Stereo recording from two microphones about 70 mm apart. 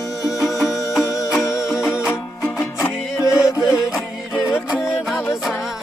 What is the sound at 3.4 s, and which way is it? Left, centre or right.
Music, left.